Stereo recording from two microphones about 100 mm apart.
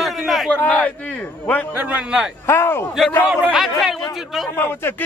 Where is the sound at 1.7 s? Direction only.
15° right (ahead or behind).